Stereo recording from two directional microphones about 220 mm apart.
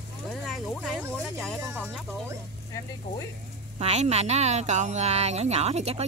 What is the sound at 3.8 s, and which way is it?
Speech, 30° right (ahead or behind).